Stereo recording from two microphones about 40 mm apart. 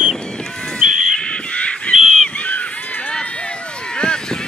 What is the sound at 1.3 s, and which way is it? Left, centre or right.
Crow, left.